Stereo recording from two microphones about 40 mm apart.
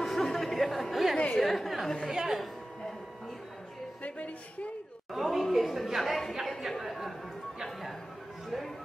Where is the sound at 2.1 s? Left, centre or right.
Centre.